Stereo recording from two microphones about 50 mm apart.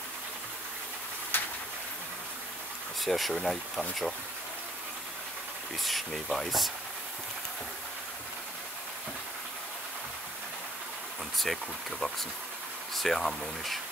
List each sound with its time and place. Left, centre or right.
1.3 s a sound: left
3.0 s speech: centre
5.8 s speech: centre
11.3 s speech: centre